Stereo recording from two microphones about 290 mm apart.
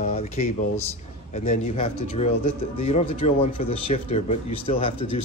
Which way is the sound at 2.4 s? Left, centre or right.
Left.